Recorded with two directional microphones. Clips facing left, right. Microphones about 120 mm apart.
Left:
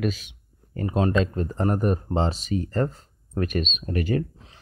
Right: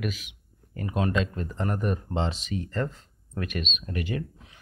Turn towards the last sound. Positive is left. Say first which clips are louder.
# left 6 dB
turn(degrees=40)  # may be behind; listen again after turning